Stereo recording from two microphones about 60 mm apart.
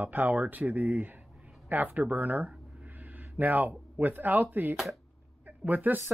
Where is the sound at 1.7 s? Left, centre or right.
Right.